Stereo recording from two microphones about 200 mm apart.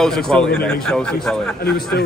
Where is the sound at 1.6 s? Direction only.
50° left (ahead or behind).